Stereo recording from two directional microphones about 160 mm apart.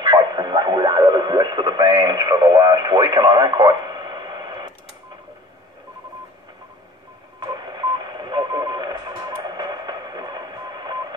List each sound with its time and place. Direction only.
0.0 s radio: 25° right (ahead or behind)
7.3 s radio: 25° right (ahead or behind)